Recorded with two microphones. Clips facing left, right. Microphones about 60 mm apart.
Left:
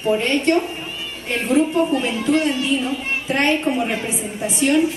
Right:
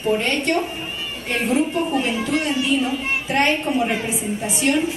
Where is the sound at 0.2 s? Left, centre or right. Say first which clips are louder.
Left 3 dB; centre.